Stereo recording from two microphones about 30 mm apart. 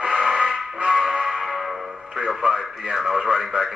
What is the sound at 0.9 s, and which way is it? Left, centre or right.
Music, centre.